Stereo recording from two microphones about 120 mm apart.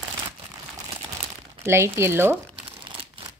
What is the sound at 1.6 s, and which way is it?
Speech, 20° right (ahead or behind).